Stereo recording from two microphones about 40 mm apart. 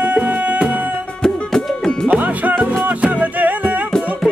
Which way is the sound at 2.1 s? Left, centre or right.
Right.